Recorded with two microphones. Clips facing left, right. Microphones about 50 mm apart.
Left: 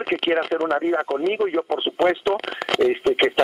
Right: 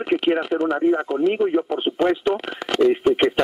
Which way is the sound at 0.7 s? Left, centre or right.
Left.